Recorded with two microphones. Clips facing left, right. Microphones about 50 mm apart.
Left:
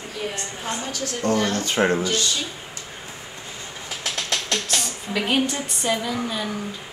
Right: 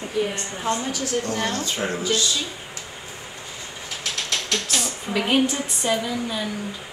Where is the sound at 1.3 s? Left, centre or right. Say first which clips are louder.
Left 3 dB; right.